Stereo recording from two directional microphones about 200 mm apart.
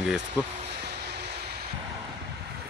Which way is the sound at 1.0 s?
55° right (ahead or behind).